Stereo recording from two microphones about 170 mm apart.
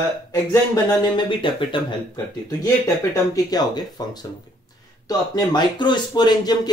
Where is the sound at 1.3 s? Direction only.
30° left (ahead or behind).